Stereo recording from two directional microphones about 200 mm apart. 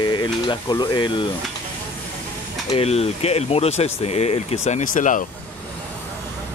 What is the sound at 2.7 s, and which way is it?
Speech, 30° left (ahead or behind).